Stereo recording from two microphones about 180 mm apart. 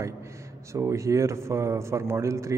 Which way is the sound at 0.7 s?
15° right (ahead or behind).